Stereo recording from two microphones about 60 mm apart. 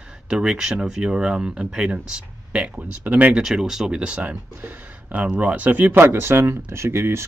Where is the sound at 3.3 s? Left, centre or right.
Centre; by 6.0 s right.